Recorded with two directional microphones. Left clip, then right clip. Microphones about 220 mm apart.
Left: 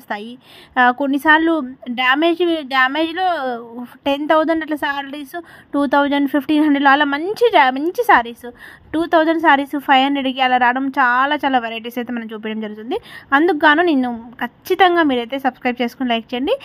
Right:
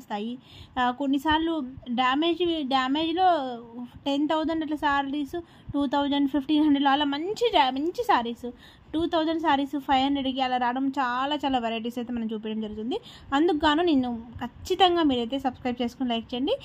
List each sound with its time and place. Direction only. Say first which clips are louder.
0.1 s a woman's voice: left 6 dB; 25° left (ahead or behind)